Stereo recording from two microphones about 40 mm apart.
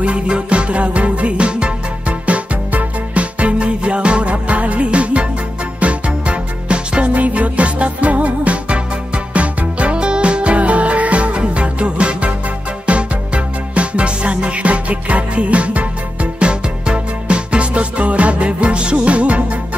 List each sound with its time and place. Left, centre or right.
0.0 s music: right